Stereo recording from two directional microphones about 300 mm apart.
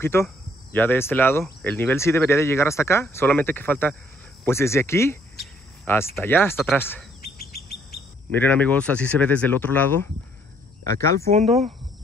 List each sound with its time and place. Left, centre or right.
0.0 s speech: centre
8.4 s speech: centre
11.3 s speech: right